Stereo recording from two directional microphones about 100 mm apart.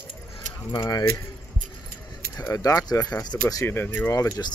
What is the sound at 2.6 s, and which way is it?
Speech, 35° left (ahead or behind).